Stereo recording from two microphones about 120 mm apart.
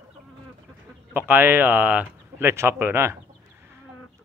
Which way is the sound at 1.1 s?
15° right (ahead or behind).